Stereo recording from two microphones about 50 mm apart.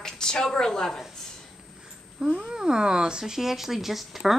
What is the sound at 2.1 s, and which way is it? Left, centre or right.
A woman's voice, centre.